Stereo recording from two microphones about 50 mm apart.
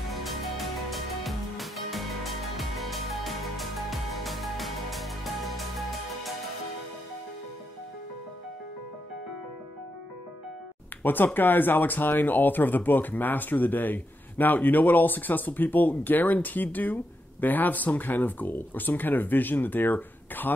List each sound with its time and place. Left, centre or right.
0.1 s music: centre
11.0 s speech: left